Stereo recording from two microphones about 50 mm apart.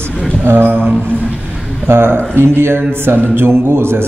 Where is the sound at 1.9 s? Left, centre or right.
Right.